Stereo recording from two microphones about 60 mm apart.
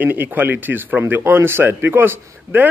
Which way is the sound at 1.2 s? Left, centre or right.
Right.